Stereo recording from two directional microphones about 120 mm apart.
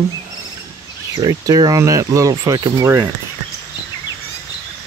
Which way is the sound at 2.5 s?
40° right (ahead or behind).